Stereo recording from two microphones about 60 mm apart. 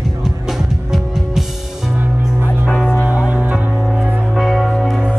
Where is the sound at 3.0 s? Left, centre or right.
Right.